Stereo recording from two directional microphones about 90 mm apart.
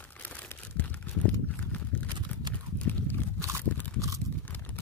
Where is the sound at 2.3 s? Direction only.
20° left (ahead or behind).